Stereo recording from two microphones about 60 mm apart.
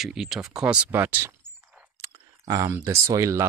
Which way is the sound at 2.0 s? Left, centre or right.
Right.